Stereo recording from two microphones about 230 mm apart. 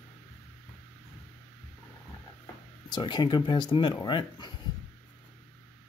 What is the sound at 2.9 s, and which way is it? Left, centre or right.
Speech, centre.